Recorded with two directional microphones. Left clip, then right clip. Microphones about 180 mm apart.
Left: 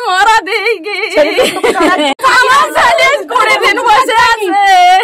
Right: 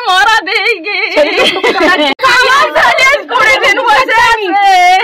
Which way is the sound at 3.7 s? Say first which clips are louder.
Even; 35° left (ahead or behind).